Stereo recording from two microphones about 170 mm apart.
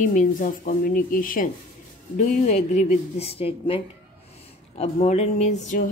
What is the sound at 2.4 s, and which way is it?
A woman's voice, 40° left (ahead or behind).